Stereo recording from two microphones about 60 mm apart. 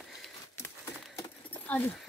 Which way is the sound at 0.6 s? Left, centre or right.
Left.